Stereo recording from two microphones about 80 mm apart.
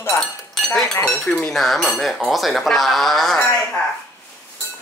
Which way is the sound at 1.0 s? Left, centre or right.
Centre.